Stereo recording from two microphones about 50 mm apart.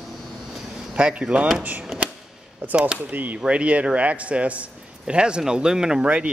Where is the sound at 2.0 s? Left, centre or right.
Right.